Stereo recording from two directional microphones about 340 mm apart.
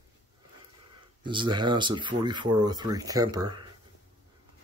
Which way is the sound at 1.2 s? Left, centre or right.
Centre.